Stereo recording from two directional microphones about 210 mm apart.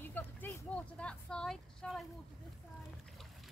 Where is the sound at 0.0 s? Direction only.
10° left (ahead or behind).